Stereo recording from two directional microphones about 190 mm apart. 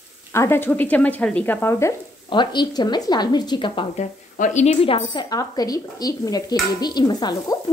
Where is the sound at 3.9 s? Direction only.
40° left (ahead or behind).